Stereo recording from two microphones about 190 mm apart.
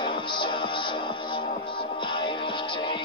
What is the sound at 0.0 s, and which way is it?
Music, 25° left (ahead or behind).